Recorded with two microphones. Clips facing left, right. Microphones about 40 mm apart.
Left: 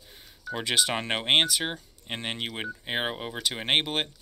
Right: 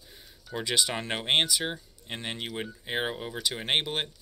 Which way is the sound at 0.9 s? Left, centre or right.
Left.